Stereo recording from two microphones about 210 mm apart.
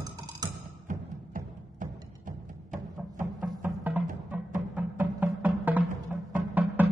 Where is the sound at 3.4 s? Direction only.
5° right (ahead or behind).